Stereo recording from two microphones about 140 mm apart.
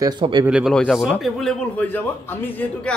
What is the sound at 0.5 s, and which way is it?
Speech, 5° right (ahead or behind).